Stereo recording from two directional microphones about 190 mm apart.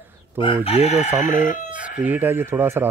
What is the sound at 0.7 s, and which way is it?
Chicken, 35° left (ahead or behind).